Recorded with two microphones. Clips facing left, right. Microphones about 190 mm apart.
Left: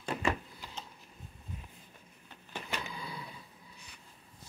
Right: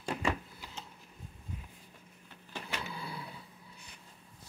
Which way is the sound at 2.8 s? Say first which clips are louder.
Right 1 dB; 10° right (ahead or behind).